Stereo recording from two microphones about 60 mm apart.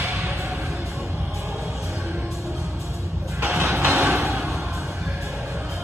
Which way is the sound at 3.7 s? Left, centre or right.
Right.